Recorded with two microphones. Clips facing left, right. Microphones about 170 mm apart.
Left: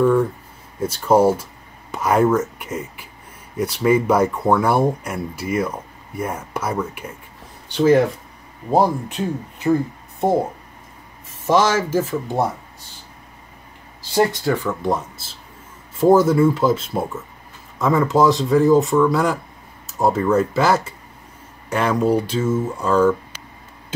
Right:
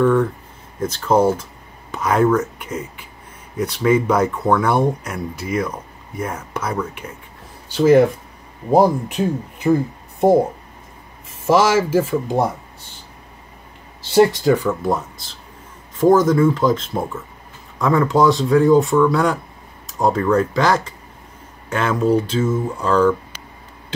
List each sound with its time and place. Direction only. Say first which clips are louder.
0.0 s speech: even; 10° left (ahead or behind)
7.6 s speech: right 2 dB; 5° right (ahead or behind)
8.7 s speech: right 3 dB; 15° right (ahead or behind)
11.4 s speech: right 2 dB; 10° right (ahead or behind)
14.1 s speech: right 5 dB; 20° right (ahead or behind)
14.8 s speech: right 1 dB; centre (ahead or behind)